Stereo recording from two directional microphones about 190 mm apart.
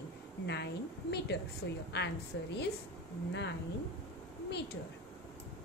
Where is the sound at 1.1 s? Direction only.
60° left (ahead or behind).